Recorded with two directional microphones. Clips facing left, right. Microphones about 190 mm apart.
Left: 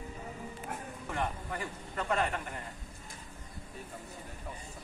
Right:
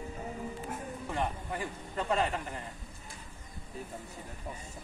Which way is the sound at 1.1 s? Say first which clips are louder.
Right 1 dB; 20° right (ahead or behind).